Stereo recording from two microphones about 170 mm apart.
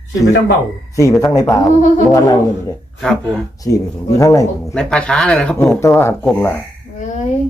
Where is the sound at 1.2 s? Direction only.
20° left (ahead or behind).